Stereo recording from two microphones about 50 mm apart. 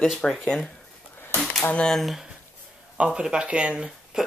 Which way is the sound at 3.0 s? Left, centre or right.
Centre.